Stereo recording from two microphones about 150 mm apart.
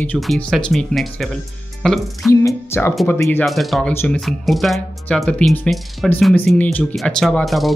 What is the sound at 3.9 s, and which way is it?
Speech, 15° left (ahead or behind).